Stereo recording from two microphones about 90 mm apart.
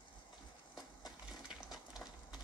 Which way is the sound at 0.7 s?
50° left (ahead or behind).